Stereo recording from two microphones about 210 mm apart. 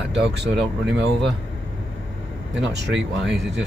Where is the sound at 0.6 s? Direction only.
55° right (ahead or behind).